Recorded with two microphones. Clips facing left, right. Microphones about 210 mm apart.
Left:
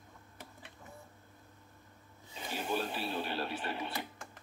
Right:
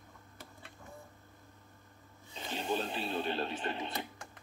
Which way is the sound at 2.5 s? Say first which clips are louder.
Right 1 dB; 20° right (ahead or behind).